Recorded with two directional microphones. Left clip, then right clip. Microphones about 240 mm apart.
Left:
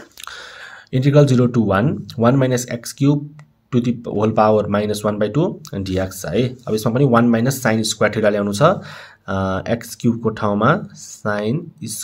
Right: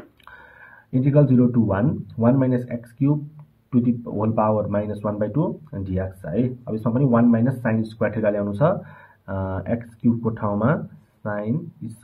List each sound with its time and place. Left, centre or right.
0.9 s speech: left